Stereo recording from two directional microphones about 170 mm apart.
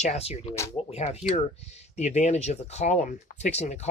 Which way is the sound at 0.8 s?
35° left (ahead or behind).